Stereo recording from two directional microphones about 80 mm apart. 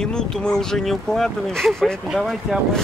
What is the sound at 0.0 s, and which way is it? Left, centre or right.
Speech, centre.